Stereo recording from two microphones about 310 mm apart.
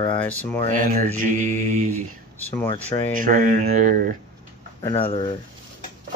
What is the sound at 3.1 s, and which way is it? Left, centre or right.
Speech, right.